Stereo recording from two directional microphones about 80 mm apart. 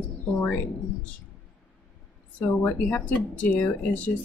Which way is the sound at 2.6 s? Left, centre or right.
Centre.